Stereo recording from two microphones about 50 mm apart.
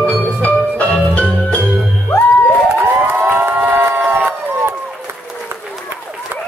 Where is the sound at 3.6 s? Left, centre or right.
Right.